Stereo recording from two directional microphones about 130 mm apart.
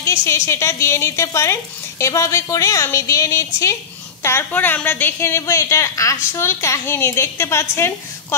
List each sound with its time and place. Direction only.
0.0 s a woman's voice: 20° left (ahead or behind)